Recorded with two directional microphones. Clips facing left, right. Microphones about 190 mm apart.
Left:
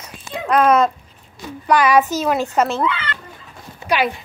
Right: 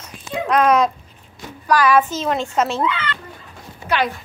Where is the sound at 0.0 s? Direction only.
5° left (ahead or behind).